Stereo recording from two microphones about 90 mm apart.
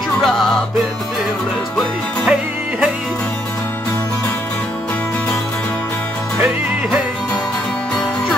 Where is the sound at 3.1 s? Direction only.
20° left (ahead or behind).